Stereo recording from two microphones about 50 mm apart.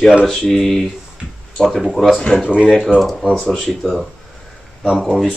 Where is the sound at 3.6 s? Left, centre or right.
Centre.